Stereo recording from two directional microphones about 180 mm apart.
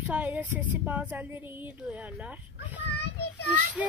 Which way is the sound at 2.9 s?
65° left (ahead or behind).